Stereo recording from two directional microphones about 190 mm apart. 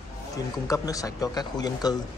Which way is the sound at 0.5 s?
20° left (ahead or behind).